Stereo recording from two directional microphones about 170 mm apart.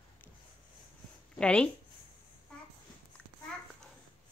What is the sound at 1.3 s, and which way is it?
Speech, 5° left (ahead or behind).